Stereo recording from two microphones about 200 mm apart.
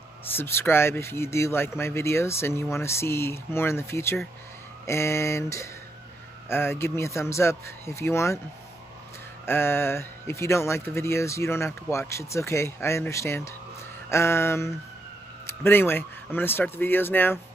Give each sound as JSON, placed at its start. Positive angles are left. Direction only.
{"t": 0.2, "sound": "speech", "side_deg": 10}
{"t": 9.5, "sound": "speech", "side_deg": 10}